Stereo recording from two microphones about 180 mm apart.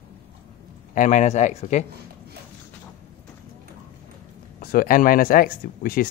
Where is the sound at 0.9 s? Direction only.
45° left (ahead or behind).